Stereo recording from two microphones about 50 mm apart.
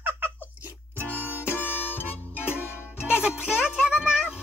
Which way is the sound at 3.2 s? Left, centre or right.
Centre.